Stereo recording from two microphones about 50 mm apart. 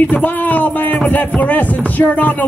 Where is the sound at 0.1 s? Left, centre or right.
Left.